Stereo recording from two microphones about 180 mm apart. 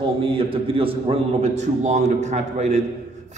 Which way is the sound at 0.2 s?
30° right (ahead or behind).